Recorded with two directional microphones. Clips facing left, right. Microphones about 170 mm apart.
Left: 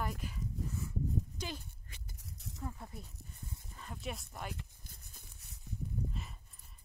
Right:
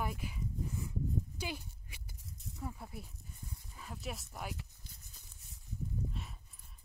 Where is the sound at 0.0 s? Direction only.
10° right (ahead or behind).